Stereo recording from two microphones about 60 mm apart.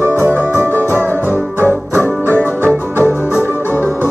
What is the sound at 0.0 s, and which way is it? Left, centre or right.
Music, right.